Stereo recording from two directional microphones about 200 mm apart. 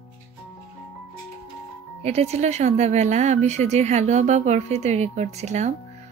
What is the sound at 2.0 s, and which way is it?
Speech, 30° right (ahead or behind).